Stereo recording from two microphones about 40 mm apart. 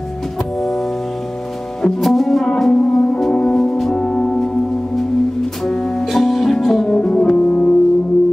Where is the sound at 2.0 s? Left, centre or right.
Centre.